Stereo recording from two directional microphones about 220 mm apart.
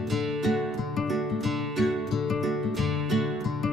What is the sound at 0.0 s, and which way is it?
Music, centre (ahead or behind).